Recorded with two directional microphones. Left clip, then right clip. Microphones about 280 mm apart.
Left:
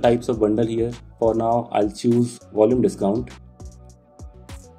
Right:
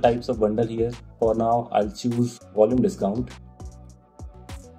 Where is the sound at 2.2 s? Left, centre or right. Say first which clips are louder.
Right 3 dB; left.